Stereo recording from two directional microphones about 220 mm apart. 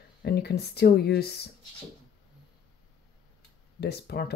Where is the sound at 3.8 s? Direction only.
45° left (ahead or behind).